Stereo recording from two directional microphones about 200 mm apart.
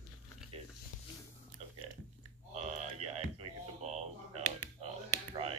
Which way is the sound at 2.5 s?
35° right (ahead or behind).